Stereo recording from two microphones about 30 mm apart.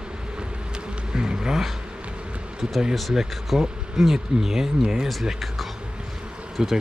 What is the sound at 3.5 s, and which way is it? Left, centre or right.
Speech, centre.